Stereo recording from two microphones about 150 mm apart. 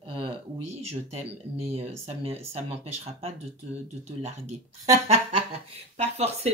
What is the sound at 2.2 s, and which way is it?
Speech, 40° right (ahead or behind).